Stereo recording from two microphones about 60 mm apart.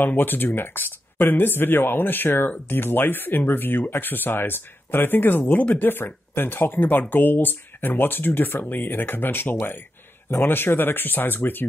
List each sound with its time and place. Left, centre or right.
0.0 s speech: left